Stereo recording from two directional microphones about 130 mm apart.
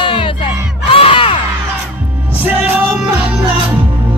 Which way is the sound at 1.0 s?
45° left (ahead or behind).